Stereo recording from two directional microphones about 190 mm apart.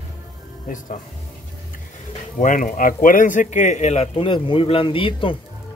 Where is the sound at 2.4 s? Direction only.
45° left (ahead or behind); by 5.4 s 25° left (ahead or behind).